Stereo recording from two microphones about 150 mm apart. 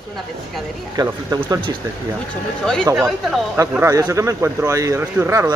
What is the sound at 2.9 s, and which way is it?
Speech, centre (ahead or behind).